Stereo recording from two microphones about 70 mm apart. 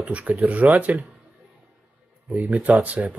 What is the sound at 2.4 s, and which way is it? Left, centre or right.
Speech, centre.